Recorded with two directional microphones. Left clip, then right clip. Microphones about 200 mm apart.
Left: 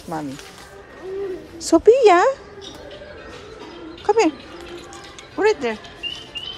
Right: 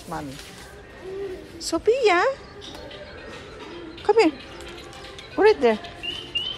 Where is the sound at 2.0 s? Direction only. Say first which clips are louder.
Left 6 dB; 20° left (ahead or behind).